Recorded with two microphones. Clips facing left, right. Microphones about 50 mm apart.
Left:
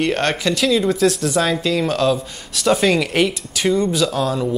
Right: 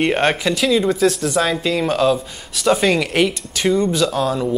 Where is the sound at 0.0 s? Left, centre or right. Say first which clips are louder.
Right 2 dB; centre.